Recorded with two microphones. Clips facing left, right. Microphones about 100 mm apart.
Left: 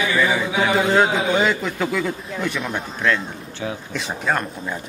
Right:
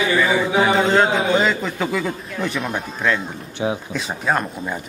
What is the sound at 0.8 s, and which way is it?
Speech, 5° left (ahead or behind).